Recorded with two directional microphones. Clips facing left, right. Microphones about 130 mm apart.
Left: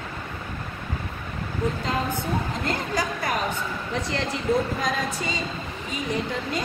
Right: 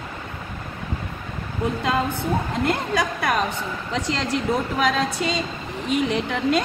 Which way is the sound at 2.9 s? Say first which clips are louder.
Right 4 dB; 70° right (ahead or behind).